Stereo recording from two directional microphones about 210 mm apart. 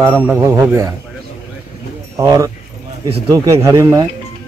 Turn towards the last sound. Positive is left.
turn(degrees=-15)  # may be behind; listen again after turning